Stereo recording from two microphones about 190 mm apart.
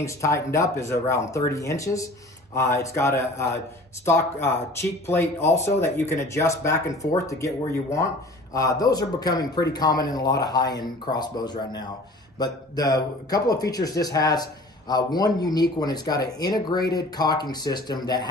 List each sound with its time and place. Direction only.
0.0 s speech: 15° left (ahead or behind)